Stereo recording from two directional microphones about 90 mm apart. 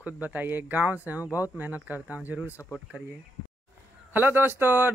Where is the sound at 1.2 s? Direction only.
35° left (ahead or behind).